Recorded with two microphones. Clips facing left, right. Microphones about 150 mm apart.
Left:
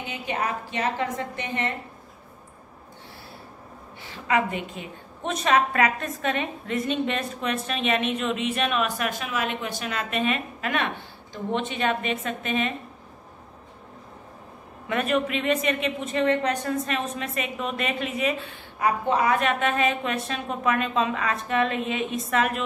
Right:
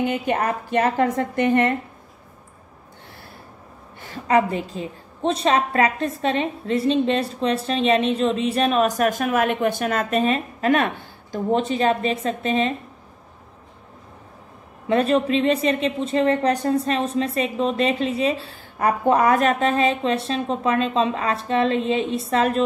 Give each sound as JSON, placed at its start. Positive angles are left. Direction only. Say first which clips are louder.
{"t": 0.0, "sound": "a woman's voice", "louder": "right 8 dB", "side_deg": -50}
{"t": 4.0, "sound": "a woman's voice", "louder": "right 5 dB", "side_deg": -40}
{"t": 14.9, "sound": "a woman's voice", "louder": "right 6 dB", "side_deg": -30}
{"t": 18.8, "sound": "a woman's voice", "louder": "right 5 dB", "side_deg": -45}